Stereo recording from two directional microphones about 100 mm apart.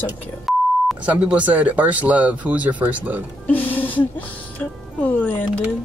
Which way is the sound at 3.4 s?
20° left (ahead or behind).